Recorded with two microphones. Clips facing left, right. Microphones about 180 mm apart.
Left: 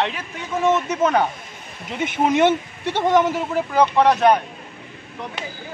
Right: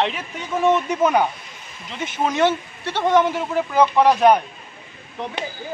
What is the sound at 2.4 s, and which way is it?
Speech, 20° left (ahead or behind).